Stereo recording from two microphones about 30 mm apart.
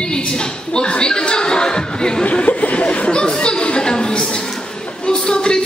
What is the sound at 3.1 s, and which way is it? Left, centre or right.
Chatter, left.